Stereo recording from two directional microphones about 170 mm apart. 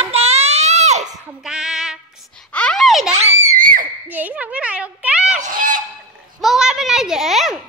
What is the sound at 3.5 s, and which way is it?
Screaming, 55° right (ahead or behind).